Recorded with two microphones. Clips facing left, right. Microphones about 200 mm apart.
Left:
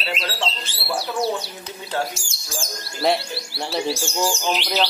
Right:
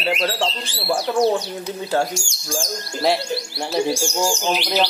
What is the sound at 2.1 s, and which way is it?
Speech, 5° left (ahead or behind).